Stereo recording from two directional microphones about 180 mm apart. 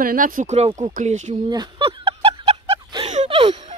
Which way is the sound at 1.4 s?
25° right (ahead or behind).